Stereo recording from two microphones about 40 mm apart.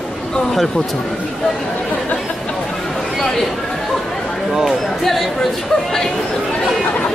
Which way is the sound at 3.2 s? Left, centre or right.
Centre.